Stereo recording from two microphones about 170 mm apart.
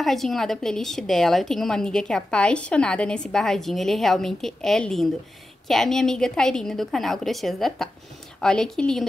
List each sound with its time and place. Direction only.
0.0 s a woman's voice: centre (ahead or behind)